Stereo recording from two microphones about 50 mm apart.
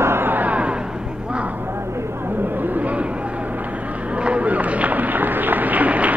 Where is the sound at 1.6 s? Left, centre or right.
Right.